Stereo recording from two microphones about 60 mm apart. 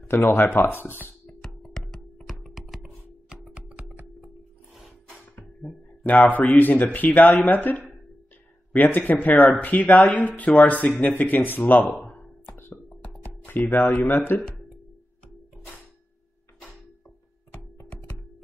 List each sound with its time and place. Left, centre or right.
0.1 s speech: left
1.4 s computer keyboard: centre
5.6 s a sound: left
6.0 s speech: left
12.4 s music: left
13.2 s speech: left